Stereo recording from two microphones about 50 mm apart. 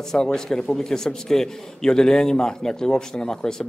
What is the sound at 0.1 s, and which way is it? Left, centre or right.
A man's voice, centre.